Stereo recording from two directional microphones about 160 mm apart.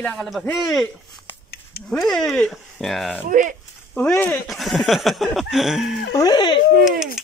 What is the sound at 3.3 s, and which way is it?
Speech, 55° right (ahead or behind).